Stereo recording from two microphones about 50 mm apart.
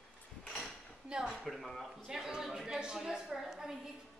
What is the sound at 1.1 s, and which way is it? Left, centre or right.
Speech, centre.